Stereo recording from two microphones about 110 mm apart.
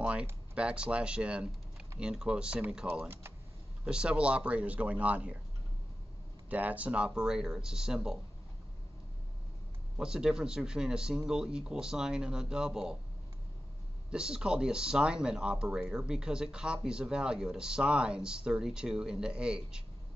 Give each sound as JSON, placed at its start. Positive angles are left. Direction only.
{"t": 0.0, "sound": "speech", "side_deg": -10}
{"t": 2.9, "sound": "speech", "side_deg": -20}
{"t": 3.8, "sound": "speech", "side_deg": -10}
{"t": 6.5, "sound": "speech", "side_deg": -15}
{"t": 9.9, "sound": "speech", "side_deg": -5}
{"t": 14.1, "sound": "speech", "side_deg": -5}